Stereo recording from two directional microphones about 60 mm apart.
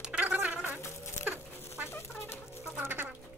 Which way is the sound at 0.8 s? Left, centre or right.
Left.